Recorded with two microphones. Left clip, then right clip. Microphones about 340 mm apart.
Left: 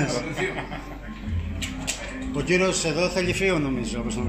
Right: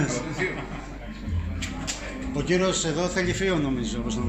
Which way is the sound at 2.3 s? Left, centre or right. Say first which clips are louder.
Left 2 dB; centre.